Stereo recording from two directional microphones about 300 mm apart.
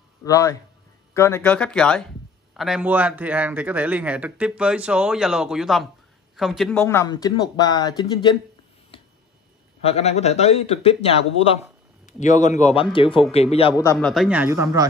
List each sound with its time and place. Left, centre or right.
0.2 s a man's voice: centre
9.8 s speech: left
13.9 s a man's voice: centre